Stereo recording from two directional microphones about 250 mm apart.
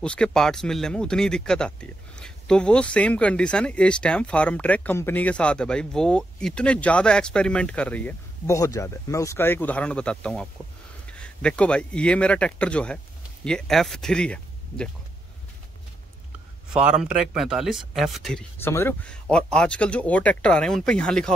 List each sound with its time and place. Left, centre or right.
0.0 s speech: centre
17.0 s speech: centre